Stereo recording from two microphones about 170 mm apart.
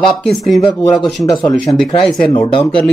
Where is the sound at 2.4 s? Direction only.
35° left (ahead or behind).